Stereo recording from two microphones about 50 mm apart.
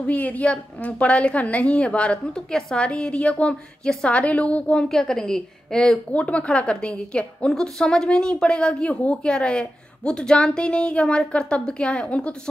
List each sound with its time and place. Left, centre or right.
0.0 s a woman's voice: left
4.8 s a woman's voice: centre
6.1 s a woman's voice: left